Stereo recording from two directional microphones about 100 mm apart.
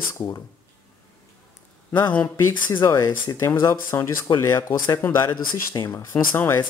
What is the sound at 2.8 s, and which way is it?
A man's voice, 30° left (ahead or behind).